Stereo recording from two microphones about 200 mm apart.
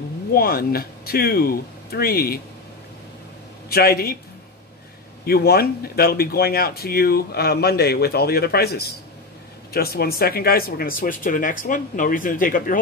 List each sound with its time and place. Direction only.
0.3 s speech: 50° left (ahead or behind)
3.6 s speech: 50° left (ahead or behind)
5.2 s speech: 50° left (ahead or behind)